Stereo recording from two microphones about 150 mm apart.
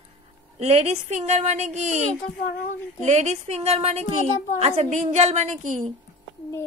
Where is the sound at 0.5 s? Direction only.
45° right (ahead or behind).